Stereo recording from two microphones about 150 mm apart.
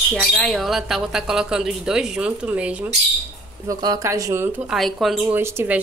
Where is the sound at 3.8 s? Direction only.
20° right (ahead or behind).